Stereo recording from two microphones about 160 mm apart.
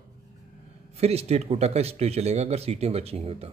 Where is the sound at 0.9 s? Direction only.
40° right (ahead or behind).